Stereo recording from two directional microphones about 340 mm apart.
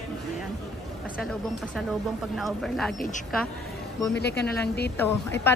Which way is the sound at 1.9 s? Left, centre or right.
Centre.